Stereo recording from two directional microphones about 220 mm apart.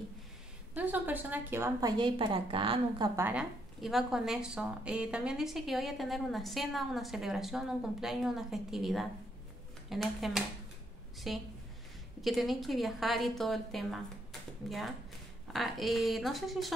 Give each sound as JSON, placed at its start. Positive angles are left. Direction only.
{"t": 0.7, "sound": "a woman's voice", "side_deg": -10}
{"t": 3.2, "sound": "a woman's voice", "side_deg": -5}